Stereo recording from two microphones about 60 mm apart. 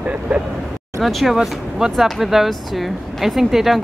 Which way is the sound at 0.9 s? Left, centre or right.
Centre.